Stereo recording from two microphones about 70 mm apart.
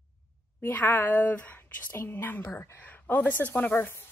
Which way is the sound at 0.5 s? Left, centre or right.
Left.